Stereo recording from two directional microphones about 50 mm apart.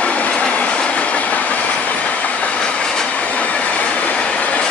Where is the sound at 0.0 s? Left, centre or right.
Left.